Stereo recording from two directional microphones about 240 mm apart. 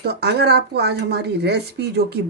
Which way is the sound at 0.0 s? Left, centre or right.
Right.